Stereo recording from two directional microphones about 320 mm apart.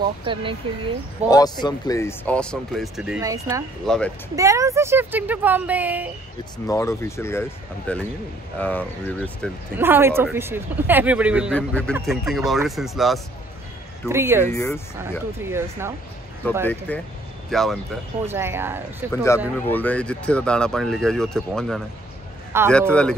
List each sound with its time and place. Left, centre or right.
0.0 s speech: centre
1.3 s speech: centre
3.8 s speech: centre
4.4 s speech: centre
6.7 s speech: centre
9.8 s speech: centre
14.4 s speech: centre
15.3 s speech: centre
16.4 s speech: centre
19.7 s speech: centre